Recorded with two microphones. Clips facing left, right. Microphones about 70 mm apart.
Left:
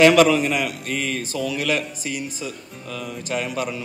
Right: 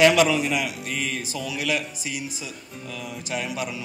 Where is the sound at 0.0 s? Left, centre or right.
Left.